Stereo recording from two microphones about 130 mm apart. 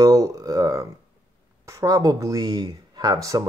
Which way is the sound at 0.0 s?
30° right (ahead or behind).